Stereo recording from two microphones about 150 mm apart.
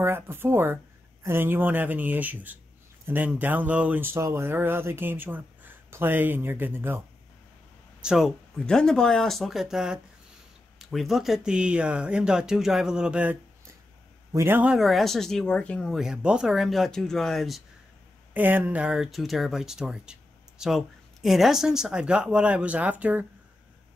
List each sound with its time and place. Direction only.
0.0 s speech: 15° right (ahead or behind)
8.0 s speech: 5° right (ahead or behind)
18.3 s speech: 10° right (ahead or behind)